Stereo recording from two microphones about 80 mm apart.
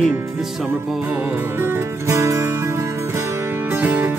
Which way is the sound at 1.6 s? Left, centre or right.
Right.